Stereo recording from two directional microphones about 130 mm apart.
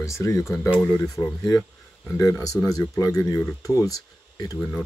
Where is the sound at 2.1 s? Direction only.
25° left (ahead or behind).